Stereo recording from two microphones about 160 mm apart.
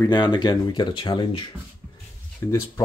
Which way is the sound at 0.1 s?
30° left (ahead or behind).